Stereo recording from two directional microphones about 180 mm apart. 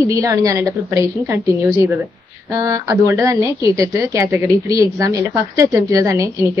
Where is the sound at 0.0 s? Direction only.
15° right (ahead or behind).